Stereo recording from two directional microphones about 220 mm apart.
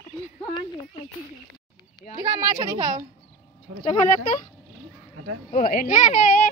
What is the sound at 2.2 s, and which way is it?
Speech, 20° right (ahead or behind).